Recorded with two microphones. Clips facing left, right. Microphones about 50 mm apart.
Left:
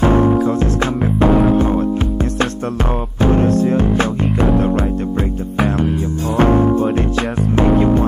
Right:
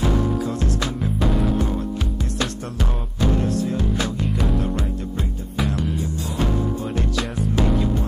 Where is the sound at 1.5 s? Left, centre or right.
Left.